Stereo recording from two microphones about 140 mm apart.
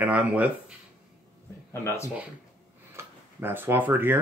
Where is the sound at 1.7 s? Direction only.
20° left (ahead or behind).